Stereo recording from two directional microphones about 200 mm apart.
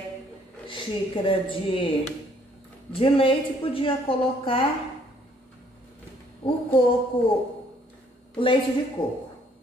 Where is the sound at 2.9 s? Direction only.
25° left (ahead or behind).